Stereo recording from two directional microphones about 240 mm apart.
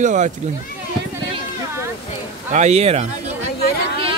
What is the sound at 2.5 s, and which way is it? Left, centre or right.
Speech, right.